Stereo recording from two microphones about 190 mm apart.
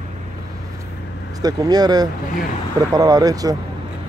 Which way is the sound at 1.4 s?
20° right (ahead or behind).